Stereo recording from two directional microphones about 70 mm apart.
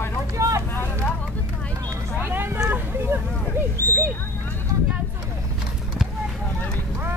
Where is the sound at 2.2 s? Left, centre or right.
Right.